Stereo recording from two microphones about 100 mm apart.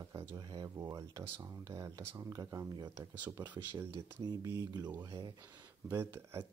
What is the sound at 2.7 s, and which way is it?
Speech, 45° right (ahead or behind).